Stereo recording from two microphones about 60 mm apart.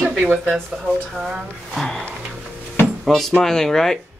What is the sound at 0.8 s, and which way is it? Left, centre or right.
Speech, centre.